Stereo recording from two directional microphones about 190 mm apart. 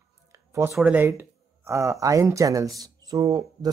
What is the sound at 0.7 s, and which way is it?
Speech, 5° right (ahead or behind).